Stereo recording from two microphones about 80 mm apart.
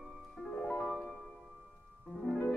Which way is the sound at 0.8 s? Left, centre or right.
Centre.